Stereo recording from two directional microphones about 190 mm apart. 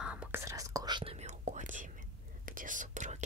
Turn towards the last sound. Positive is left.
turn(degrees=-40)  # may be behind; listen again after turning